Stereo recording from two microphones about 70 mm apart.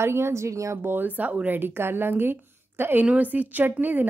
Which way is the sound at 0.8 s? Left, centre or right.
Right.